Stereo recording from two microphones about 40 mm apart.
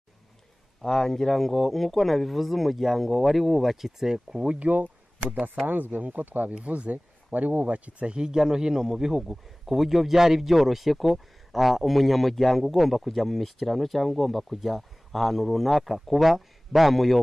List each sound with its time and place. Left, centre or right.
0.8 s speech: centre
4.6 s speech: right
6.5 s speech: right; by 17.2 s centre